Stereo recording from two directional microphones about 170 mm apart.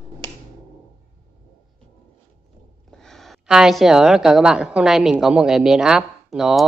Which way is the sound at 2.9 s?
Centre (ahead or behind).